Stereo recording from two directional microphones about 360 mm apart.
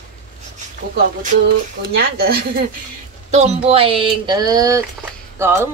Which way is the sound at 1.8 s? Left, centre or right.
Right.